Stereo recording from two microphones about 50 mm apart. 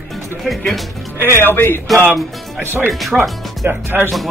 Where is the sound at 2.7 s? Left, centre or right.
Right.